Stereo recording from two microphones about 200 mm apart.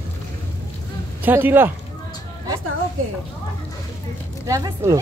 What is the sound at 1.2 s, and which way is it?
Speech, 10° right (ahead or behind).